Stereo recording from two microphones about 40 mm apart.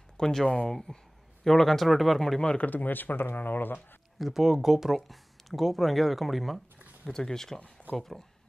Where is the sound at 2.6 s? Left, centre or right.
Left.